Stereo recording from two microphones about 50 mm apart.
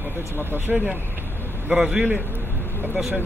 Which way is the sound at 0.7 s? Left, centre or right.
Centre.